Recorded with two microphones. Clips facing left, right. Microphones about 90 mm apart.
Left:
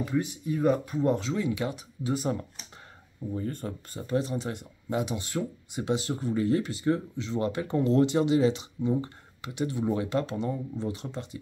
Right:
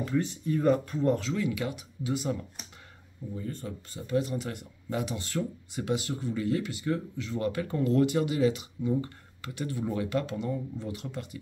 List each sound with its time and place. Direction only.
0.0 s speech: 10° left (ahead or behind); by 2.3 s 35° left (ahead or behind)
3.3 s speech: 45° left (ahead or behind)
4.2 s speech: 25° left (ahead or behind)